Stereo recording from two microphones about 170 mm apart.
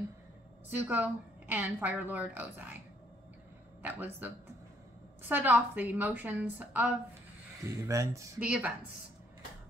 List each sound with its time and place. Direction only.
0.7 s a woman's voice: 10° right (ahead or behind)
3.8 s a woman's voice: 10° right (ahead or behind)
5.3 s a woman's voice: 10° right (ahead or behind)
8.4 s a woman's voice: 10° right (ahead or behind)